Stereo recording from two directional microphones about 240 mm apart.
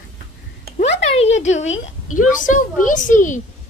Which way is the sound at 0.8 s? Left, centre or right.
Left.